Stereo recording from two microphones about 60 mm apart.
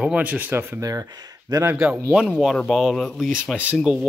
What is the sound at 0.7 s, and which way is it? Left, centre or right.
Speech, right.